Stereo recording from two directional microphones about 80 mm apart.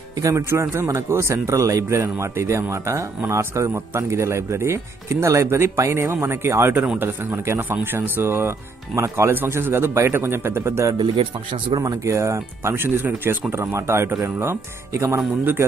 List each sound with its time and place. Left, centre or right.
0.2 s a man's voice: right
9.3 s a man's voice: right
11.0 s speech: right
11.8 s a man's voice: right